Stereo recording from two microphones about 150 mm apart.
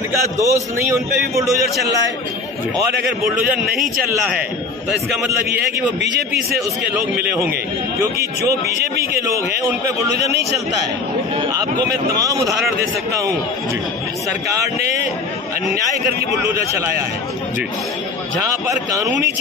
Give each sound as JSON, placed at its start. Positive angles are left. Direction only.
{"t": 0.4, "sound": "a man's voice", "side_deg": -20}
{"t": 8.0, "sound": "a man's voice", "side_deg": -20}
{"t": 12.2, "sound": "a man's voice", "side_deg": -20}